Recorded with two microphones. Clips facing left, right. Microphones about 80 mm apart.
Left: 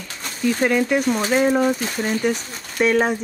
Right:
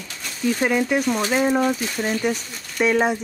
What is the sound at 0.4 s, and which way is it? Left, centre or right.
Speech, centre.